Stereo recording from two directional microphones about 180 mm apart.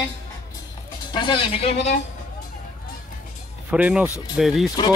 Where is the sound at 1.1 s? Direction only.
25° left (ahead or behind).